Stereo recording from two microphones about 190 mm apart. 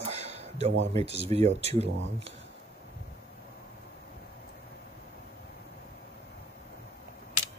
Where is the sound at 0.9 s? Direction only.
35° right (ahead or behind).